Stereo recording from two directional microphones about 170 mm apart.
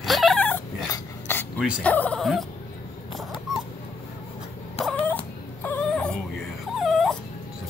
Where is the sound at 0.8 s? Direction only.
15° left (ahead or behind).